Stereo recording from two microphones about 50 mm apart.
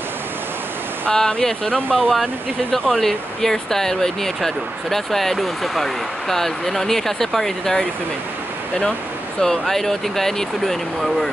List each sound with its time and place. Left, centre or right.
1.1 s speech: centre
9.4 s speech: centre